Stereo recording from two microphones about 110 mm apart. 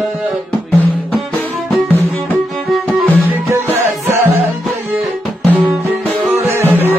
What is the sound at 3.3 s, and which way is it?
Music, 20° right (ahead or behind).